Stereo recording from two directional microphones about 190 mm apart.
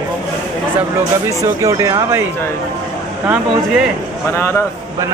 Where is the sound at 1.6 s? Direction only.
15° right (ahead or behind).